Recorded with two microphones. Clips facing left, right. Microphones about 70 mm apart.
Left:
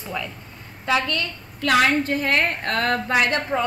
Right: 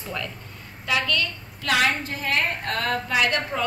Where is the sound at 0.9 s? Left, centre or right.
Left.